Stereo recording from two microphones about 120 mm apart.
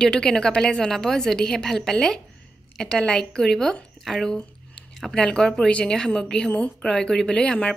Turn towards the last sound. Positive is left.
turn(degrees=10)  # may be behind; listen again after turning